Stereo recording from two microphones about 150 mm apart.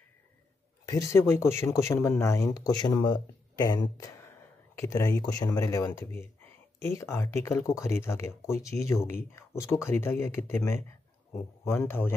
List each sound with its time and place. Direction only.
0.8 s speech: 20° left (ahead or behind)